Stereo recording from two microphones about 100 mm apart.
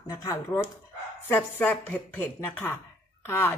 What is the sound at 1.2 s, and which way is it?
Speech, 15° left (ahead or behind).